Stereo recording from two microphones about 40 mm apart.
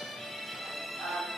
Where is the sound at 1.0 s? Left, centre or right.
Centre.